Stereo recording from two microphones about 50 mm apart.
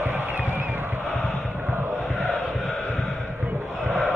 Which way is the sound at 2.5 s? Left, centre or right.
Centre.